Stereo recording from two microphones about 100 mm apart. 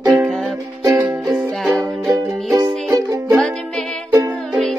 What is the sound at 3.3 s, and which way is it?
Music, 5° left (ahead or behind).